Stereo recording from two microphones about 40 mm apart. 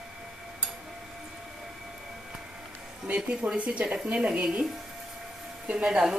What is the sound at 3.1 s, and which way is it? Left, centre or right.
Speech, right.